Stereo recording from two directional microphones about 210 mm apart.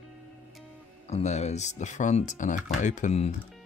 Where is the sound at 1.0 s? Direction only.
30° left (ahead or behind).